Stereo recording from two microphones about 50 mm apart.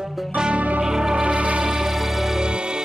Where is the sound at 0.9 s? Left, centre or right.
Centre.